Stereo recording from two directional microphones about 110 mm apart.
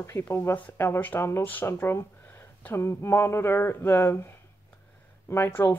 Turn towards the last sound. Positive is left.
turn(degrees=25)  # may be behind; listen again after turning